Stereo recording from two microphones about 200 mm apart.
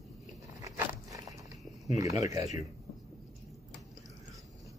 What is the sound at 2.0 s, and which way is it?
Speech, 15° right (ahead or behind).